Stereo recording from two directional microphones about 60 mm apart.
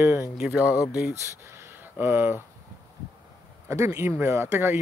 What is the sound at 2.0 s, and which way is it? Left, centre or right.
Speech, right.